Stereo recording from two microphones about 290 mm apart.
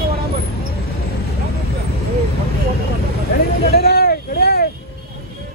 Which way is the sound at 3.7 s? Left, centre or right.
Left.